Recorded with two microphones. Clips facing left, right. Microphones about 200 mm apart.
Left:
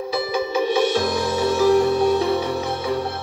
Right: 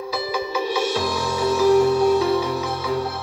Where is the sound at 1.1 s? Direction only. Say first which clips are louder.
Left 1 dB; 60° left (ahead or behind).